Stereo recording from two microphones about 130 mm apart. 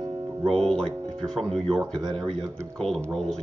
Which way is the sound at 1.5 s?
50° right (ahead or behind).